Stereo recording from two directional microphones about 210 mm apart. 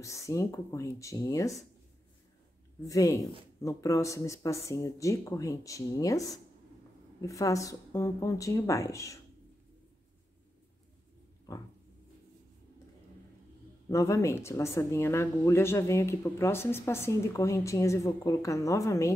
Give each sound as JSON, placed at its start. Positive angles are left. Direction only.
{"t": 0.0, "sound": "speech", "side_deg": 15}
{"t": 2.9, "sound": "speech", "side_deg": 15}
{"t": 11.5, "sound": "speech", "side_deg": 15}
{"t": 13.8, "sound": "speech", "side_deg": 15}